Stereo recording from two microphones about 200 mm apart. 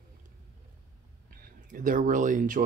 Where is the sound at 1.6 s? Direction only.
40° right (ahead or behind).